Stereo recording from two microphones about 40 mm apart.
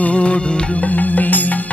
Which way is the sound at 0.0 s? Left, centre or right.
Left.